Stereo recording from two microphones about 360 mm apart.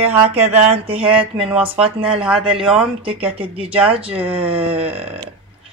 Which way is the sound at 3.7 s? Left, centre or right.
Centre.